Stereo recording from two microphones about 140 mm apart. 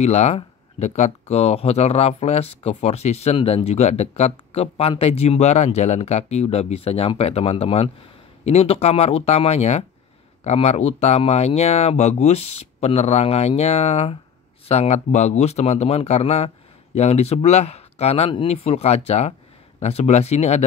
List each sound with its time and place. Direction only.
0.0 s speech: 50° left (ahead or behind)